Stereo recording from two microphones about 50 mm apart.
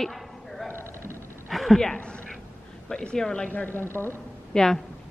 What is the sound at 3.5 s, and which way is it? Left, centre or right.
Speech, left.